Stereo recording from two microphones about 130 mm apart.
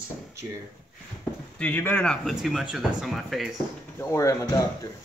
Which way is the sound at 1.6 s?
15° left (ahead or behind).